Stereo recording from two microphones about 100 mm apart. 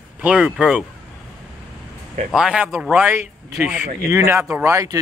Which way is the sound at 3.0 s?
20° right (ahead or behind).